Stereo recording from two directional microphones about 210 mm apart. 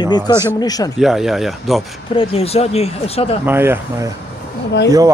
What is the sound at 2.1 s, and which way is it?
Speech, 30° left (ahead or behind).